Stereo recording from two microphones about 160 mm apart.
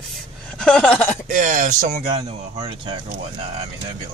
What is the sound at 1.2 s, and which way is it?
Speech, 55° right (ahead or behind).